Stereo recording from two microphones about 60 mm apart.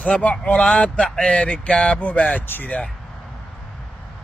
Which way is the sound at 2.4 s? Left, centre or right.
Left.